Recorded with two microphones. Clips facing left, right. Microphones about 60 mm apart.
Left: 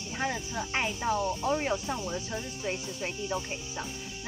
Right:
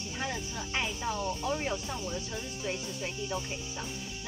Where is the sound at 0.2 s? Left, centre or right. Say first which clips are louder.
Left 4 dB; left.